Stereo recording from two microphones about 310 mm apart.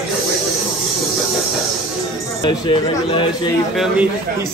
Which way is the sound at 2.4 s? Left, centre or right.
Centre.